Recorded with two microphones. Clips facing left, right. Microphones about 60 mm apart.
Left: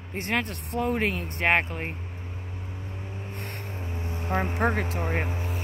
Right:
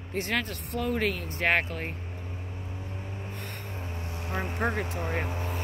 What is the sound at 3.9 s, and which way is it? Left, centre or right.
Vehicle, left.